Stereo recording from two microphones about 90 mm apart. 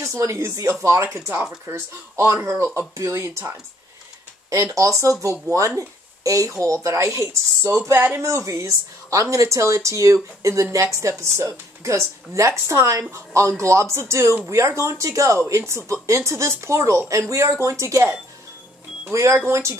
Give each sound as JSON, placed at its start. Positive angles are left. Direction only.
{"t": 0.0, "sound": "a woman's voice", "side_deg": -35}
{"t": 19.1, "sound": "a woman's voice", "side_deg": -30}